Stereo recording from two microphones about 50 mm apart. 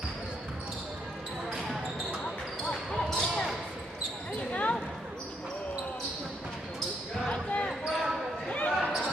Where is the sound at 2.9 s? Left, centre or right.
Centre.